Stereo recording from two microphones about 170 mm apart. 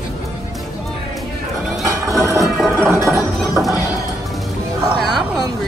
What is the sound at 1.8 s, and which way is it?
Music, 20° right (ahead or behind).